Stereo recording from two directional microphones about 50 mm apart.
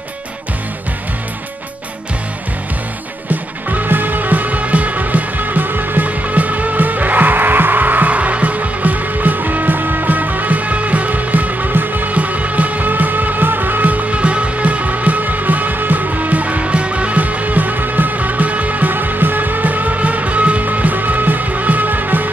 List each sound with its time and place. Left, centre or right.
3.3 s music: right